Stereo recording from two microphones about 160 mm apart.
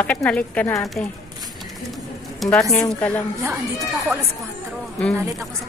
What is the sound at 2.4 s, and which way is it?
Speech, centre (ahead or behind).